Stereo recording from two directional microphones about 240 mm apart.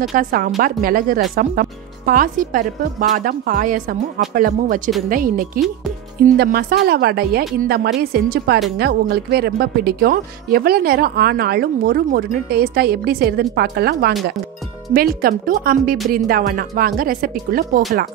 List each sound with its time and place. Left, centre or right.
0.1 s speech: right